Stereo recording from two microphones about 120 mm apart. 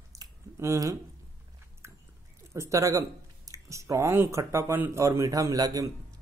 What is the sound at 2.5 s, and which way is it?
Speech, 25° right (ahead or behind).